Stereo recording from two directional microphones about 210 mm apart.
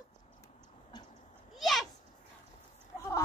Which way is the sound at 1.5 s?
Centre (ahead or behind).